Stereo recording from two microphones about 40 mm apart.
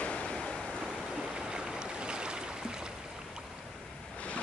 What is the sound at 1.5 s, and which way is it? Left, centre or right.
Boat, right.